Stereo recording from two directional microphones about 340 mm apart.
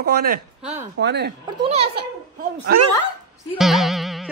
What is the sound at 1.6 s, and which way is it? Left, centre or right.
Speech, centre.